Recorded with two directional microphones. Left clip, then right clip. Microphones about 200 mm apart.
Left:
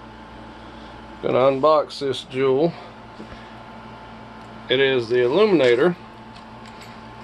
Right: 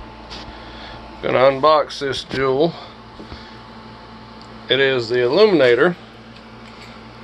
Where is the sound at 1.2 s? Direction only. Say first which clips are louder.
Right 3 dB; 5° left (ahead or behind).